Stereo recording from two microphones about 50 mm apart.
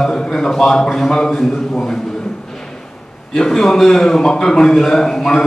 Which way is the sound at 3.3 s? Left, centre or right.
Centre.